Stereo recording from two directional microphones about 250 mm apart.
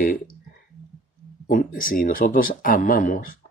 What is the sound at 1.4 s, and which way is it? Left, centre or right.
Speech, left.